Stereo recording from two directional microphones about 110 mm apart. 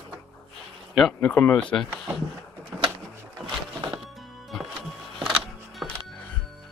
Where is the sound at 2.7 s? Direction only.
5° right (ahead or behind).